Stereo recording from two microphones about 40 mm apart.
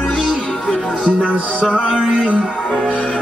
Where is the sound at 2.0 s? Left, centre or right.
Right.